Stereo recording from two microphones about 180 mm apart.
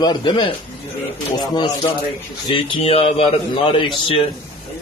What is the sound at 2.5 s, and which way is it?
A man's voice, 30° left (ahead or behind).